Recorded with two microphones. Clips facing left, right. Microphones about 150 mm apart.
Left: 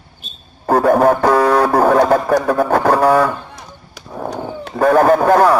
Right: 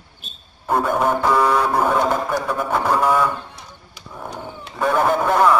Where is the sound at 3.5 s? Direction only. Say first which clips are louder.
Left 5 dB; 40° left (ahead or behind).